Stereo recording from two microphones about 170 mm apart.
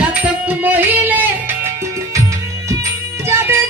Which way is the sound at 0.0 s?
10° right (ahead or behind).